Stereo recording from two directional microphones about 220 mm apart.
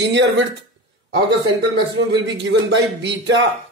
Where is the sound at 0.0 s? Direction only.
55° right (ahead or behind).